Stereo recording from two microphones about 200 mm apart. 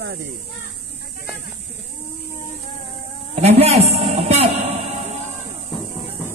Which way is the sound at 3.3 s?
30° right (ahead or behind).